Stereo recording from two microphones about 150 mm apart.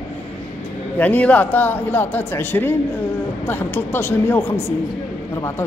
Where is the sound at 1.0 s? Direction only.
10° left (ahead or behind).